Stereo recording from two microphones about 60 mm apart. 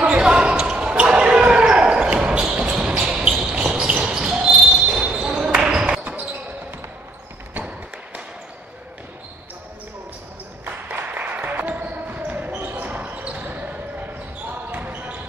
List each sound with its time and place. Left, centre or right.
0.0 s basketball bounce: centre
6.0 s basketball bounce: right
7.5 s a sound: right
10.6 s basketball bounce: right